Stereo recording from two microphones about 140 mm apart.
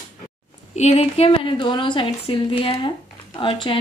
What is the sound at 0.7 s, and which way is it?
Speech, 50° left (ahead or behind).